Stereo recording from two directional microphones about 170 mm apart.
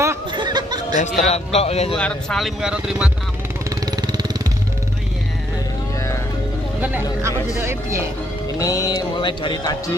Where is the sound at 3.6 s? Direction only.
25° right (ahead or behind).